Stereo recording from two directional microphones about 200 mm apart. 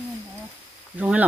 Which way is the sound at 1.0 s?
10° right (ahead or behind).